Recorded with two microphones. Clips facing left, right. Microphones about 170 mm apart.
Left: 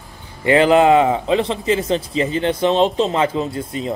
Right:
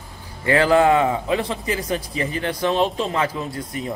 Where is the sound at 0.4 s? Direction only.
20° left (ahead or behind).